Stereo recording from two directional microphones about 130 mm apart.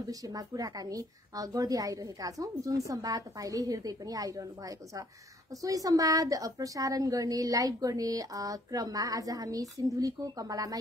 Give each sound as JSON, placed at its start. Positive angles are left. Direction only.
{"t": 0.1, "sound": "a woman's voice", "side_deg": -30}